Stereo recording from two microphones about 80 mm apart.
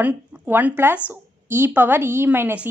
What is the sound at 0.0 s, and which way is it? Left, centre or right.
A woman's voice, right.